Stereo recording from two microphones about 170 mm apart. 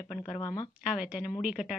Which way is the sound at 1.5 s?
5° right (ahead or behind).